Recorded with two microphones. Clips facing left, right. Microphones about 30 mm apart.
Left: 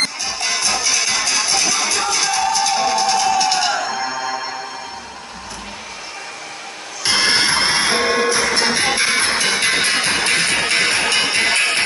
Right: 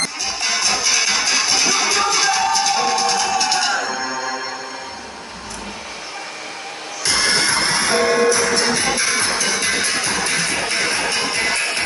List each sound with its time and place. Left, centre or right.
0.2 s music: centre
7.0 s music: left